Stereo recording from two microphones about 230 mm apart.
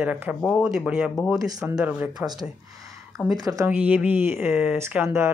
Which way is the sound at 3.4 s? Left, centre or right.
Centre.